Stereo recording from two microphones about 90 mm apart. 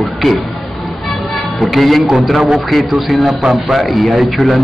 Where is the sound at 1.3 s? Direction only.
Centre (ahead or behind).